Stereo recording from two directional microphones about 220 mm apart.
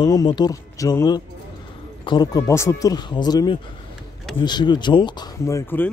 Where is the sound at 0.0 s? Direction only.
15° left (ahead or behind).